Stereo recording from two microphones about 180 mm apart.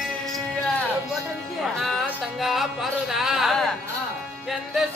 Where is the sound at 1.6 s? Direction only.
Centre (ahead or behind).